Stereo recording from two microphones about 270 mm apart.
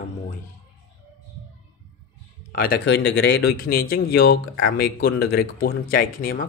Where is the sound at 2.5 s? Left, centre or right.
Left.